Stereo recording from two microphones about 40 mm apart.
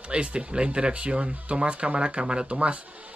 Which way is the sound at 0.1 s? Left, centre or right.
Right.